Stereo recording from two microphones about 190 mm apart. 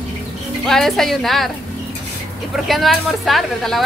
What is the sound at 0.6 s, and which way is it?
Speech, centre (ahead or behind).